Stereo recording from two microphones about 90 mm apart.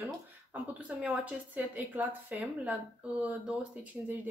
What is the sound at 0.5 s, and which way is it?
Speech, 15° right (ahead or behind).